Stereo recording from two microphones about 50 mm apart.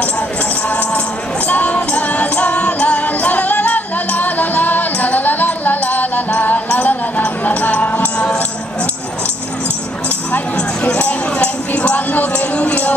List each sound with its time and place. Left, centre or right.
0.7 s music: left
8.2 s music: left
10.8 s music: left